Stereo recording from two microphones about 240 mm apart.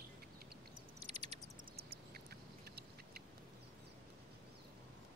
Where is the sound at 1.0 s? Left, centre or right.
Right.